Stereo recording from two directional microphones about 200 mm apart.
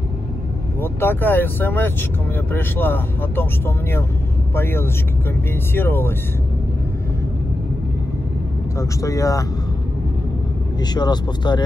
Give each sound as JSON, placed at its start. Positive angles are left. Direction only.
{"t": 0.7, "sound": "speech", "side_deg": 10}
{"t": 8.7, "sound": "speech", "side_deg": 15}
{"t": 10.8, "sound": "speech", "side_deg": 20}